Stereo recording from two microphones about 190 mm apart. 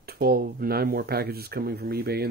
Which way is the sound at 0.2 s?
55° right (ahead or behind).